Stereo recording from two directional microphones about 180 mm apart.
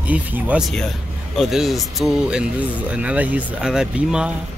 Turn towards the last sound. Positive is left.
turn(degrees=-5)  # may be behind; listen again after turning